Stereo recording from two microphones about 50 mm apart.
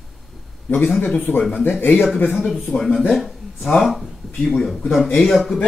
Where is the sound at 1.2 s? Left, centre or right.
Left.